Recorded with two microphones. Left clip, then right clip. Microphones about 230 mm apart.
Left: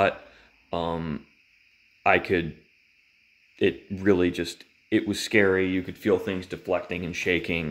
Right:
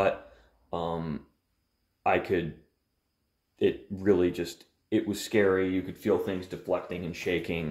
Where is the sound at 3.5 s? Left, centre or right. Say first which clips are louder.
Left 2 dB; left.